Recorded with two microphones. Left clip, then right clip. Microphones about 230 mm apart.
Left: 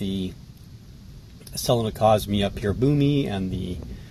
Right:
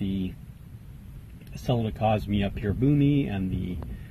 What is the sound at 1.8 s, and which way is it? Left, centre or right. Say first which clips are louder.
Speech: left 6 dB; left.